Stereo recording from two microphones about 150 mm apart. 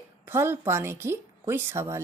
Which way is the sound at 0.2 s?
15° right (ahead or behind).